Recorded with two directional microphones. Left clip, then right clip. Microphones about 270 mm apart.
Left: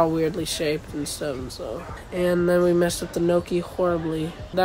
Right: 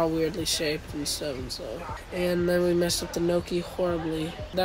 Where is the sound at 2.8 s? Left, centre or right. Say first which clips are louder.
Left 3 dB; left.